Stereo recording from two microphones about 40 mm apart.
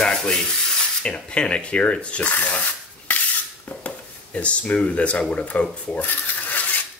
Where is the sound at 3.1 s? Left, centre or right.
Left.